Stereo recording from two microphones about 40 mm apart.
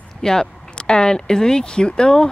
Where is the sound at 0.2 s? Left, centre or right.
Centre.